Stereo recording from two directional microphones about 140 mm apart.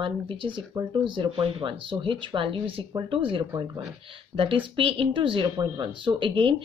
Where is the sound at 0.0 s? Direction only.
35° right (ahead or behind).